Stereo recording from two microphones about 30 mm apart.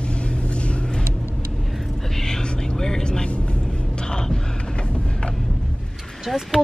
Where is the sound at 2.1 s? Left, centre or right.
Centre.